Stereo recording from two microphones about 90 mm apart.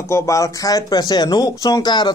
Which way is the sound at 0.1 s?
40° left (ahead or behind).